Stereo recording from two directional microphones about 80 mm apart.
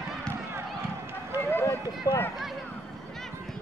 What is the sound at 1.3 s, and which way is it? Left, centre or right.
Run, right.